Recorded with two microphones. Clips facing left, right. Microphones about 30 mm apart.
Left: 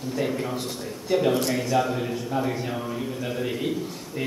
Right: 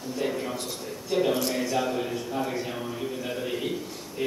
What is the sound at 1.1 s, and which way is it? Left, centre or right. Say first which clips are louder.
Speech: left 3 dB; centre.